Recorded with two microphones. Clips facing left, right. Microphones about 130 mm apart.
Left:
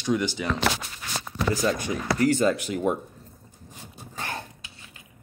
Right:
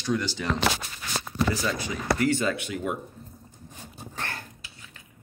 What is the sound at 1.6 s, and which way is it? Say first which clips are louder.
Speech: left 3 dB; 50° left (ahead or behind).